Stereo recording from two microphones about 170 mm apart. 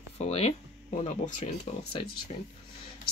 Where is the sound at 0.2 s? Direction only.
40° left (ahead or behind).